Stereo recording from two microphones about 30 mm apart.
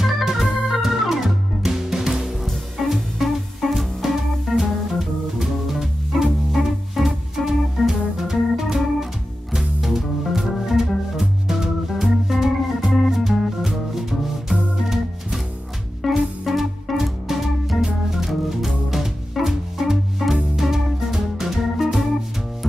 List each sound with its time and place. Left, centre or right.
0.0 s organ: centre
2.4 s music: centre
14.5 s organ: centre
16.0 s music: centre
17.8 s organ: centre
18.3 s music: centre